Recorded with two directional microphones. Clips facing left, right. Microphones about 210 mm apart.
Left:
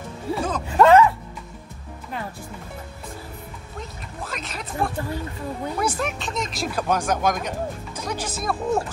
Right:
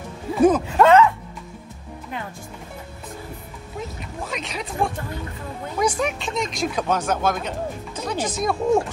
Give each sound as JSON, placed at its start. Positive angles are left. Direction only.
{"t": 0.4, "sound": "speech", "side_deg": -20}
{"t": 3.7, "sound": "speech", "side_deg": 0}